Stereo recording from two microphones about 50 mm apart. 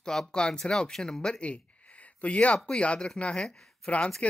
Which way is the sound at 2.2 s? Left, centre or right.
Left.